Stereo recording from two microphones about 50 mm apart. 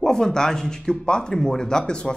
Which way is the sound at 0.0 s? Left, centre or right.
Centre.